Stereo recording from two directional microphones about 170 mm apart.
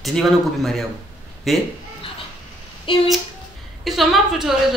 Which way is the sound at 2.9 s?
30° left (ahead or behind).